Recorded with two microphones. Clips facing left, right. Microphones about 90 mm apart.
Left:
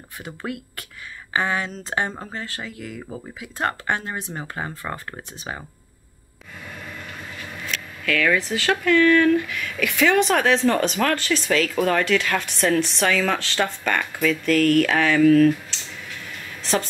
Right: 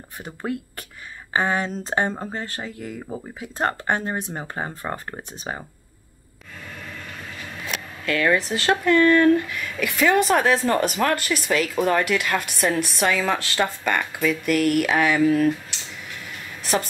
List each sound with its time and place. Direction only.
0.5 s speech: 30° right (ahead or behind)
6.7 s train: 5° left (ahead or behind)
8.0 s speech: 25° right (ahead or behind)
9.8 s speech: 10° right (ahead or behind)